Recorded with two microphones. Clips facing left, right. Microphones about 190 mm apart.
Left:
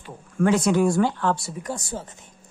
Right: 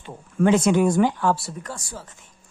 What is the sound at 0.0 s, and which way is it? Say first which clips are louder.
Speech: right 2 dB; 20° right (ahead or behind).